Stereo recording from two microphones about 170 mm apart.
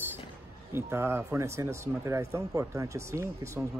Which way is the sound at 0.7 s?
15° right (ahead or behind).